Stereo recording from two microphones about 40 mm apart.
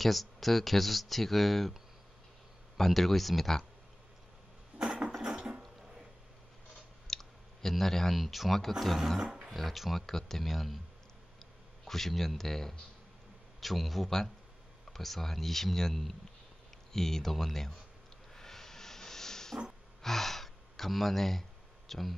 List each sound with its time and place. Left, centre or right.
0.0 s speech: centre
2.8 s speech: centre
4.7 s a sound: centre
7.1 s clicking: centre
8.2 s speech: centre
11.8 s speech: centre
18.3 s hiss: centre
20.0 s gasp: centre